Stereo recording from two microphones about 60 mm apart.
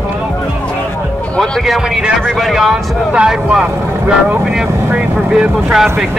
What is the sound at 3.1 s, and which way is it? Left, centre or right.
Speech, centre.